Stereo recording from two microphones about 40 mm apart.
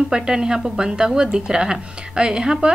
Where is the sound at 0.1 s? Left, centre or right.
Centre.